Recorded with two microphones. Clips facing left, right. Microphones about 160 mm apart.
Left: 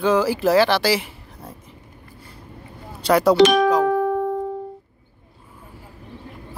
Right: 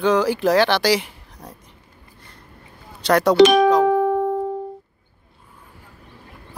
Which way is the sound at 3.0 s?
5° left (ahead or behind).